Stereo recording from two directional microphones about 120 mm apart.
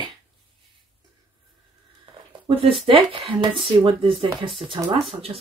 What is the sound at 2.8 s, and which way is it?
Speech, 45° right (ahead or behind).